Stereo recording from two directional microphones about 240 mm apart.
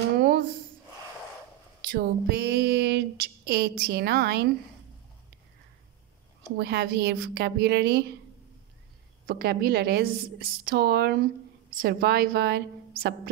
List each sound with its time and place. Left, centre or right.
1.9 s a sound: right
6.5 s a woman's voice: right
9.2 s a woman's voice: right